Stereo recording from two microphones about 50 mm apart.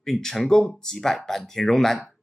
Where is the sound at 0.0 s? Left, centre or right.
Centre.